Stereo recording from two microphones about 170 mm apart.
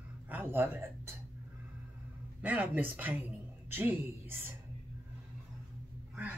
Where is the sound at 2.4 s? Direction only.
10° right (ahead or behind).